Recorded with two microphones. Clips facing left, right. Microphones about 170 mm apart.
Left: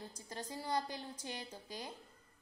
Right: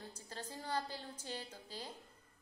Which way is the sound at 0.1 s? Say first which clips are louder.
Left 3 dB; 15° left (ahead or behind).